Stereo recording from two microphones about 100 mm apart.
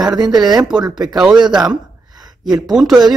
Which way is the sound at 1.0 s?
5° right (ahead or behind).